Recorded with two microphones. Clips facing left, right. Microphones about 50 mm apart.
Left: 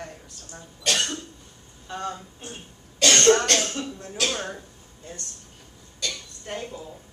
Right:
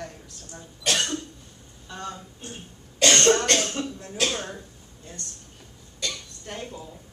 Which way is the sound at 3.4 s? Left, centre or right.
Right.